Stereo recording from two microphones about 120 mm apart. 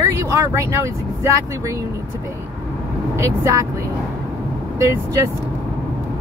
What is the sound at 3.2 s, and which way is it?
Speech, 30° right (ahead or behind).